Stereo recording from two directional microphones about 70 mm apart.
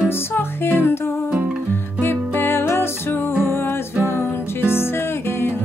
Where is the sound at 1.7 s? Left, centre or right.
Left.